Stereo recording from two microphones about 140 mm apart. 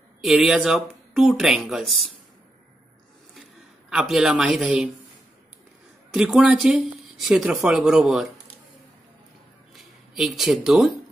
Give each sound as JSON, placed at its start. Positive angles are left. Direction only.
{"t": 0.2, "sound": "speech", "side_deg": 0}
{"t": 3.9, "sound": "speech", "side_deg": -5}
{"t": 6.1, "sound": "speech", "side_deg": -5}
{"t": 9.8, "sound": "speech", "side_deg": 0}